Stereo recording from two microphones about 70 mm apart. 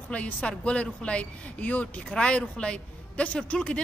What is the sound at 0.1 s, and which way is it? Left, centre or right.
A woman's voice, centre.